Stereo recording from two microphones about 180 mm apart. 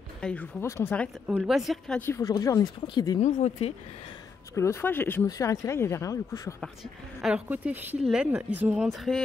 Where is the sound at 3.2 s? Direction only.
40° left (ahead or behind).